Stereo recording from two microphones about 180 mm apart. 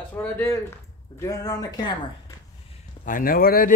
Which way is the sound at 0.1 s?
10° left (ahead or behind).